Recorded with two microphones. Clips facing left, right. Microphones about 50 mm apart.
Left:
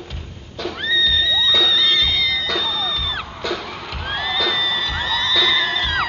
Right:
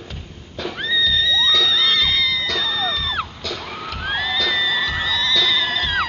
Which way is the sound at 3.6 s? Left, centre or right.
Centre.